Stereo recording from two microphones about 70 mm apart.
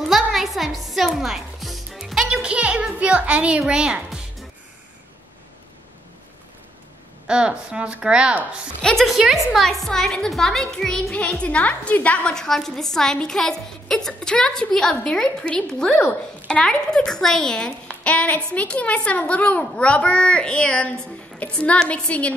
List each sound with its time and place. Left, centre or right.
0.0 s music: centre
2.4 s music: centre
3.0 s speech: centre
7.2 s speech: centre
8.8 s a woman's voice: centre; by 12.4 s left
12.4 s a woman's voice: centre